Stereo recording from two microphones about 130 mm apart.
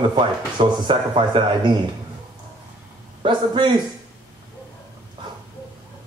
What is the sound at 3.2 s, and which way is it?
Speech, 40° right (ahead or behind).